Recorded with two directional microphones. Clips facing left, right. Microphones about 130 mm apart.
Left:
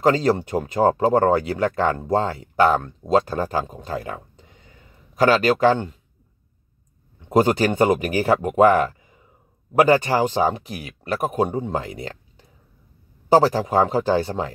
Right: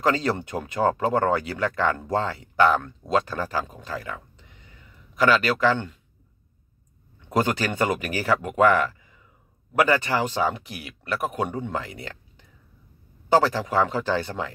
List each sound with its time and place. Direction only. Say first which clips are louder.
0.0 s speech: left 5 dB; 35° left (ahead or behind)
3.9 s a sound: left 4 dB; 35° left (ahead or behind)
5.1 s speech: left 4 dB; 40° left (ahead or behind)
7.2 s speech: left 6 dB; 30° left (ahead or behind)